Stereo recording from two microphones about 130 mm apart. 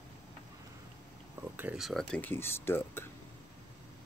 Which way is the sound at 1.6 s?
5° right (ahead or behind).